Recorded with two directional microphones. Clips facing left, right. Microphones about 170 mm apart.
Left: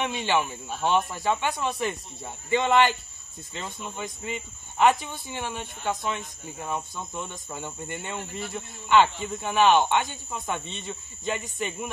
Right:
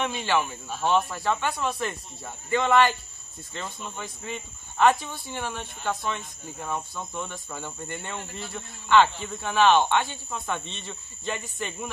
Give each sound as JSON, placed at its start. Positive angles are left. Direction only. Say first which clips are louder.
{"t": 0.0, "sound": "speech", "louder": "even", "side_deg": 15}